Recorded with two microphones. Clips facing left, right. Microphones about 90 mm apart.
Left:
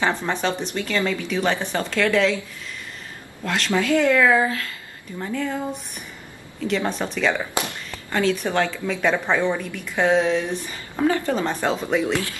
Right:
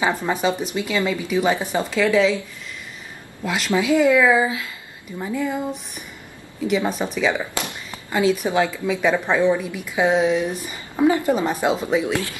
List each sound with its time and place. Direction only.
0.0 s a woman's voice: 10° right (ahead or behind)
3.4 s a woman's voice: 10° right (ahead or behind)